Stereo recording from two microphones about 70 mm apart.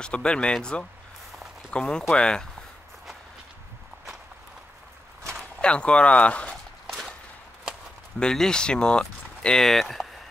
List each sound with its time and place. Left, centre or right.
0.0 s speech: centre
5.6 s speech: centre
8.2 s speech: centre